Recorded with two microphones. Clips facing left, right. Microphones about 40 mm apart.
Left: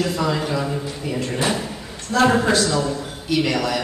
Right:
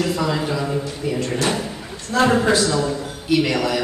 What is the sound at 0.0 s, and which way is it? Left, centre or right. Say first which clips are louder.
A man's voice: right 1 dB; centre.